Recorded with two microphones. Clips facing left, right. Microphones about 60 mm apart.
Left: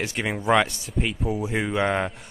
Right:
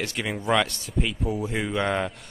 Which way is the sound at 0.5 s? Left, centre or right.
Centre.